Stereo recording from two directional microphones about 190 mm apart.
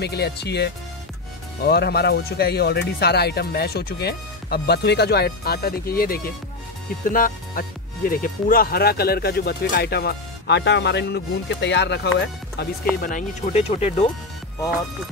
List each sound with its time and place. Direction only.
0.0 s speech: 60° left (ahead or behind)
13.0 s speech: 40° left (ahead or behind)